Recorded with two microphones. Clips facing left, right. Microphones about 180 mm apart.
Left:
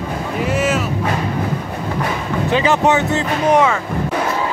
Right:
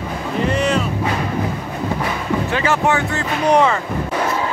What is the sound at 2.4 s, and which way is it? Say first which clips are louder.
Speech: left 5 dB; 20° left (ahead or behind).